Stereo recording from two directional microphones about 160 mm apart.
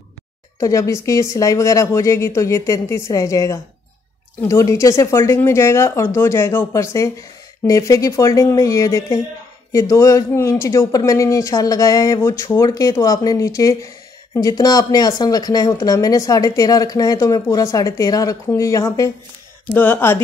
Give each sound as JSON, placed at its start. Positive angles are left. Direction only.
{"t": 0.6, "sound": "speech", "side_deg": 20}